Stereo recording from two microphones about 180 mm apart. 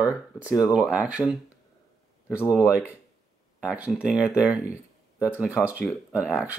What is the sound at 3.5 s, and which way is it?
Speech, 5° right (ahead or behind).